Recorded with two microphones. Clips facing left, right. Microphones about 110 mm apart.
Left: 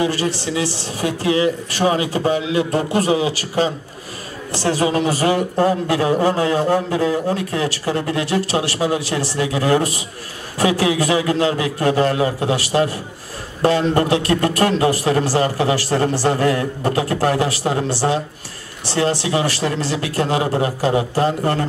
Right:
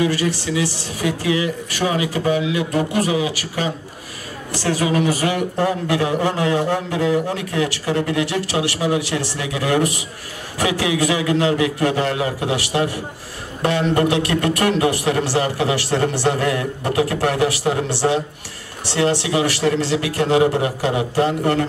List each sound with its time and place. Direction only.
0.0 s a woman's voice: 30° left (ahead or behind)